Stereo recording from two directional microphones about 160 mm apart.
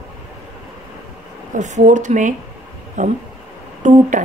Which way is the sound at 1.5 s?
50° right (ahead or behind).